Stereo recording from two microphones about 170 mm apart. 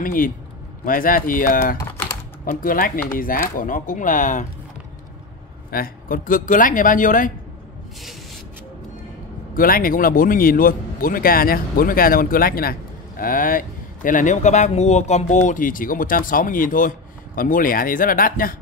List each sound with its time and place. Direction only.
0.0 s speech: 55° left (ahead or behind)
1.8 s typing: 15° left (ahead or behind)
2.4 s speech: 55° left (ahead or behind)
5.7 s speech: 55° left (ahead or behind)
9.5 s speech: 55° left (ahead or behind)